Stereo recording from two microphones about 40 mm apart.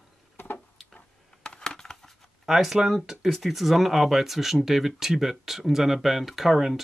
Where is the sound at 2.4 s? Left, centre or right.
Centre.